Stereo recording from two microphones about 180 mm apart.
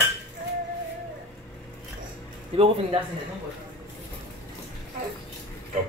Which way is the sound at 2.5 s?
30° right (ahead or behind).